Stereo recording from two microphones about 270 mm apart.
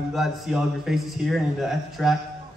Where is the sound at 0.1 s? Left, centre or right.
Centre.